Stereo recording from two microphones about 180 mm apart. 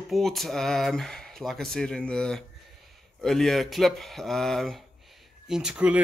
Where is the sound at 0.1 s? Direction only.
Centre (ahead or behind).